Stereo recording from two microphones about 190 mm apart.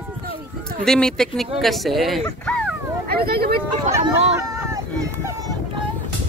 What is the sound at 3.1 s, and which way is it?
Vehicle, 55° right (ahead or behind).